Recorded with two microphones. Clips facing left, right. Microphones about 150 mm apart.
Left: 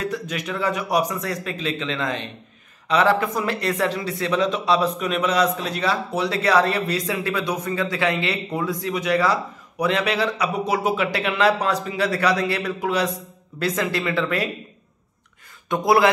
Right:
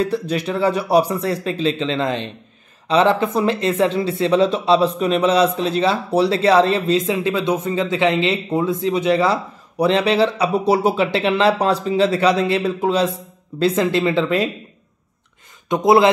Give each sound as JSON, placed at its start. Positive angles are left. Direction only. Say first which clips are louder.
{"t": 0.0, "sound": "speech", "louder": "right 7 dB", "side_deg": -30}
{"t": 15.7, "sound": "speech", "louder": "right 4 dB", "side_deg": -20}